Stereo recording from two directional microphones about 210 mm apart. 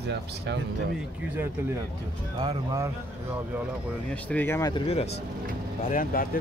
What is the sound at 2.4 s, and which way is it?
Speech, 15° right (ahead or behind).